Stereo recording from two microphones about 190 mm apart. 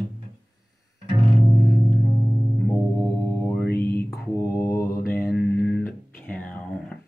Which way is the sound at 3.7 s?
55° left (ahead or behind).